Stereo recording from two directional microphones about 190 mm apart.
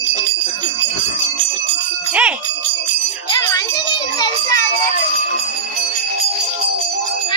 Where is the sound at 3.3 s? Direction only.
20° left (ahead or behind).